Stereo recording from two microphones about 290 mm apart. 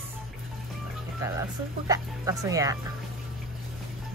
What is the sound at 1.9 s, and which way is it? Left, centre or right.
Speech, centre.